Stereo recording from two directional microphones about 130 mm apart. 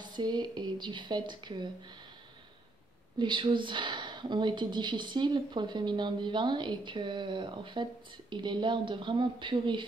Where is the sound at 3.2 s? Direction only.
40° right (ahead or behind).